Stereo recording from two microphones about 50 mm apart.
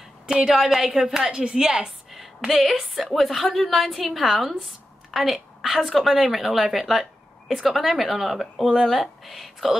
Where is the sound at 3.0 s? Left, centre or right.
Centre.